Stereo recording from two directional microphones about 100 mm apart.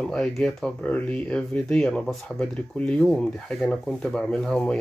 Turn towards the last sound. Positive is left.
turn(degrees=5)  # may be behind; listen again after turning